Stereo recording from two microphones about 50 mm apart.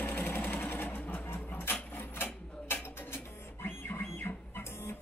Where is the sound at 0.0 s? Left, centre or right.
Left.